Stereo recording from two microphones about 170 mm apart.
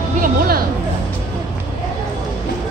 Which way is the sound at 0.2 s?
60° right (ahead or behind).